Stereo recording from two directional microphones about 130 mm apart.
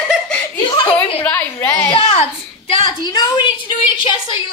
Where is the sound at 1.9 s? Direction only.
45° left (ahead or behind).